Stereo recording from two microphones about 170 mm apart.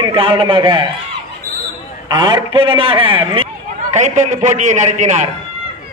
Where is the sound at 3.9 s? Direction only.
45° right (ahead or behind).